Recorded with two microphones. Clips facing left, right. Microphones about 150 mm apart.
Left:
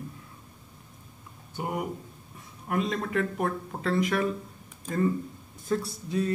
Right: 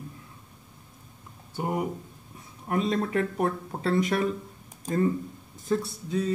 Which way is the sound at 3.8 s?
25° right (ahead or behind).